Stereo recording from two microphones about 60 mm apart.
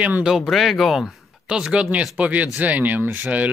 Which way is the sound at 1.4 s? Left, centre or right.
Centre.